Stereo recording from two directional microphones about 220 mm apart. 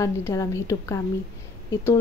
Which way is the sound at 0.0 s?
15° left (ahead or behind).